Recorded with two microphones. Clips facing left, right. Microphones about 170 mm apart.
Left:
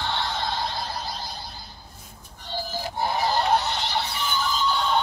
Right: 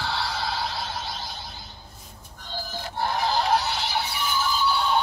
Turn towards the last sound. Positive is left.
turn(degrees=-10)  # may be behind; listen again after turning